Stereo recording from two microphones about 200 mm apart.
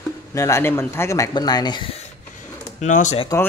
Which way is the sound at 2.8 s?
35° left (ahead or behind).